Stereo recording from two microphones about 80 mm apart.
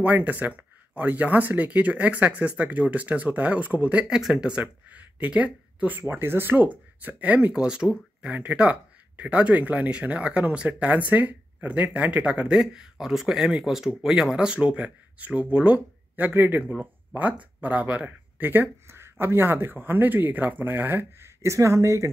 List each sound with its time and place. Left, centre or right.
0.0 s speech: right